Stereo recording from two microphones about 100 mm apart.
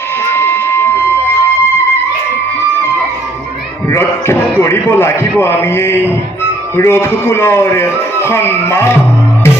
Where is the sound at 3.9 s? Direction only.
25° left (ahead or behind).